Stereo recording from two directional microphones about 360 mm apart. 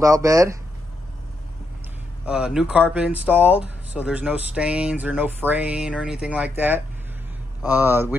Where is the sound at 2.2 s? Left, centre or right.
Centre.